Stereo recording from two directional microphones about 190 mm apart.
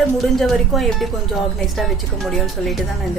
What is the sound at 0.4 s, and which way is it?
Speech, centre (ahead or behind).